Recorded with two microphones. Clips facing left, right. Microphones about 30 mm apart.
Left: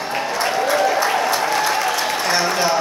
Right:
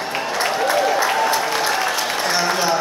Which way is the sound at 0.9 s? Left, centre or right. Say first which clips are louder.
Even; centre.